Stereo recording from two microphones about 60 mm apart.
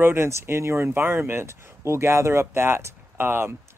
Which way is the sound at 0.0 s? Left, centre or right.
Right.